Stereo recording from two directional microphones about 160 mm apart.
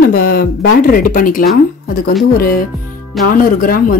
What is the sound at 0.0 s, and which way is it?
Speech, 70° left (ahead or behind).